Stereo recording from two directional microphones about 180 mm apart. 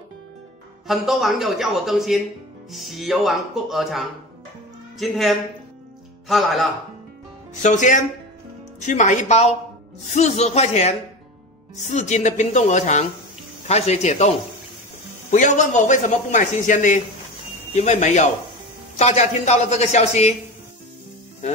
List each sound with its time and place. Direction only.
0.8 s a woman's voice: centre (ahead or behind)
7.6 s a man's voice: 45° left (ahead or behind)
15.3 s a man's voice: 45° left (ahead or behind)